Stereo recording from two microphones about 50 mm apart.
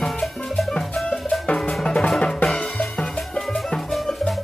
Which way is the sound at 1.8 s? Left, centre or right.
Centre.